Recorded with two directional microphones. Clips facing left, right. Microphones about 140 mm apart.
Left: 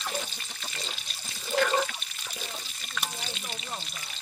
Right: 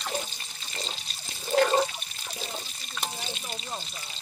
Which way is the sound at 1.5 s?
35° right (ahead or behind).